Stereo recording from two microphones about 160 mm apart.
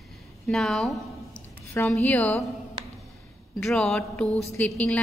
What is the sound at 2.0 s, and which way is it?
Speech, 10° left (ahead or behind).